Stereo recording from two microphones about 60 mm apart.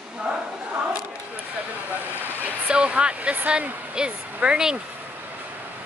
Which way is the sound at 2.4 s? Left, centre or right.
Centre.